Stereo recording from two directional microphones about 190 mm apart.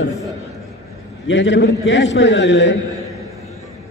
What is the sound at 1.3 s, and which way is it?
A man's voice, 70° left (ahead or behind).